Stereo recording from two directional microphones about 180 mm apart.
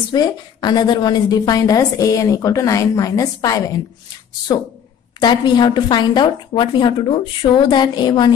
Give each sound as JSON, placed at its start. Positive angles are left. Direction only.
{"t": 0.1, "sound": "a woman's voice", "side_deg": 25}